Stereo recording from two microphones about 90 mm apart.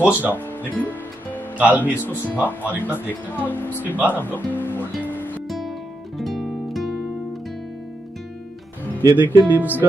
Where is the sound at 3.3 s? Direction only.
20° left (ahead or behind).